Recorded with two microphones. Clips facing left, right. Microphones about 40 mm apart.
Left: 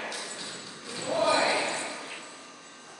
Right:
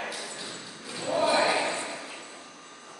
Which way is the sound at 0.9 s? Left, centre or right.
Centre.